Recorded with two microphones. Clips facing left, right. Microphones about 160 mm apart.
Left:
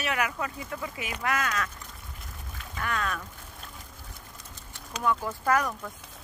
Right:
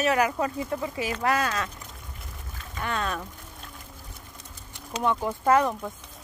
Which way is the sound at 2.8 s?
30° right (ahead or behind).